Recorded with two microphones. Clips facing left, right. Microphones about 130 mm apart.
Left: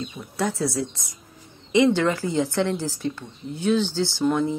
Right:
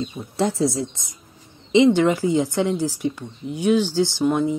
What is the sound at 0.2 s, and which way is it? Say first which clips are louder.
A woman's voice: right 4 dB; 25° right (ahead or behind).